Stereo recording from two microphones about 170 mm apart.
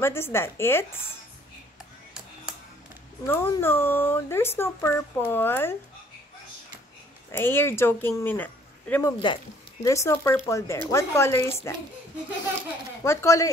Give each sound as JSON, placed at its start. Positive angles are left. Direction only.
{"t": 0.0, "sound": "speech", "side_deg": 15}
{"t": 3.3, "sound": "speech", "side_deg": 15}
{"t": 7.2, "sound": "speech", "side_deg": 15}
{"t": 13.0, "sound": "speech", "side_deg": 15}